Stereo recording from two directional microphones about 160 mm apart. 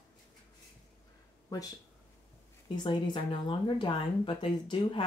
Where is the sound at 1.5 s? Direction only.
20° left (ahead or behind).